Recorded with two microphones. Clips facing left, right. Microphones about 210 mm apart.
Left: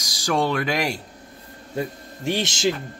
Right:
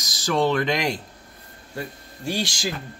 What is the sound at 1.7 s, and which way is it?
A man's voice, 20° left (ahead or behind).